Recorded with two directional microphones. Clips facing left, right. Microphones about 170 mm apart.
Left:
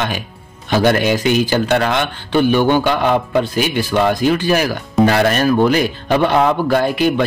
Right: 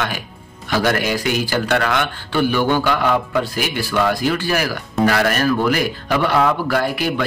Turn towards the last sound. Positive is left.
turn(degrees=20)  # may be behind; listen again after turning